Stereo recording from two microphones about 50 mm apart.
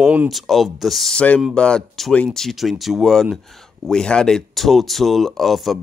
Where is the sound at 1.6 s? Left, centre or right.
Centre.